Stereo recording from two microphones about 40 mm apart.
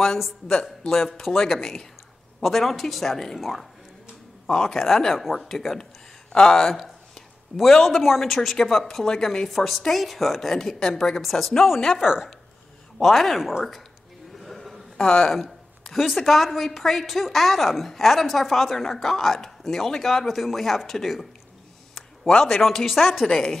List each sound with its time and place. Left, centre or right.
0.8 s a woman's voice: centre
4.5 s speech: centre
4.8 s a woman's voice: centre
6.3 s speech: centre
6.7 s a sound: centre
7.7 s a woman's voice: centre
12.0 s speech: centre
13.0 s a woman's voice: centre
14.4 s a sound: centre
15.0 s speech: centre
15.8 s a sound: centre
16.2 s a woman's voice: centre
21.9 s a sound: centre
22.6 s a woman's voice: centre